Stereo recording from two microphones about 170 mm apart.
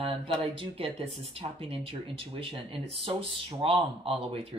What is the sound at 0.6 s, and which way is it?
Speech, 35° right (ahead or behind).